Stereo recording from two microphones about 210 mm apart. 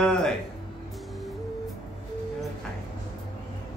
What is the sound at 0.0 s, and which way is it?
Music, 5° left (ahead or behind).